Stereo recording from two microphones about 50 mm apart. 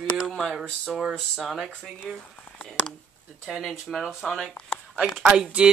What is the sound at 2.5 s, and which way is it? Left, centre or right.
Speech, centre.